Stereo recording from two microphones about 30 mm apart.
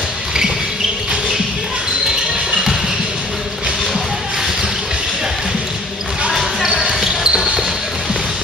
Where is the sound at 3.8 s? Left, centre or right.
Centre.